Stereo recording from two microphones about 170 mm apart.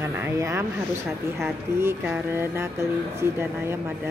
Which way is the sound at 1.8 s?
15° right (ahead or behind).